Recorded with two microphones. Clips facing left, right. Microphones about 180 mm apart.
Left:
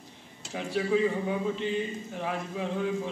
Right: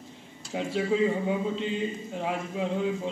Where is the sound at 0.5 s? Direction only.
20° right (ahead or behind).